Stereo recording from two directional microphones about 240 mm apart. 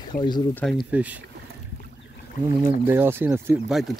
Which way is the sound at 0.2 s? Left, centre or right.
Centre.